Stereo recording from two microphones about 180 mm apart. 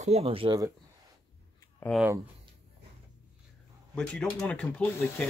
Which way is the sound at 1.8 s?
10° left (ahead or behind).